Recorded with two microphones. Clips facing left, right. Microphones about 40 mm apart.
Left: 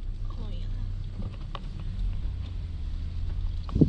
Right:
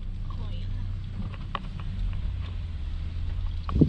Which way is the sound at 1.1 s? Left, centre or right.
Right.